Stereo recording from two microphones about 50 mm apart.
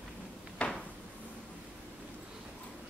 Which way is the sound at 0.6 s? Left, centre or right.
Left.